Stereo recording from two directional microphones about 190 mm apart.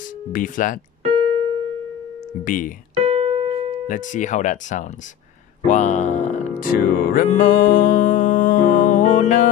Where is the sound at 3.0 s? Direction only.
30° right (ahead or behind).